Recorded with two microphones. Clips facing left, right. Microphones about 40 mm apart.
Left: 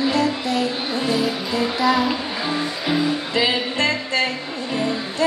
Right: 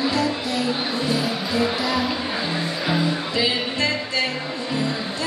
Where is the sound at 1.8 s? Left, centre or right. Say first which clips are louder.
Left 4 dB; centre.